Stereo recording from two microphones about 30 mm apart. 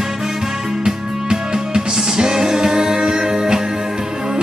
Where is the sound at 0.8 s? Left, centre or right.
Right.